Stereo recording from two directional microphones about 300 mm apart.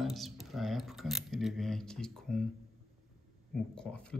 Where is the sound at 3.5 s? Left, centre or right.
Centre.